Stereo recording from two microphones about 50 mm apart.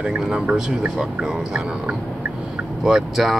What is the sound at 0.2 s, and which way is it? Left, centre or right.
Speech, centre.